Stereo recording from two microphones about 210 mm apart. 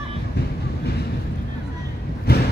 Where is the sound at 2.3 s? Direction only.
50° left (ahead or behind).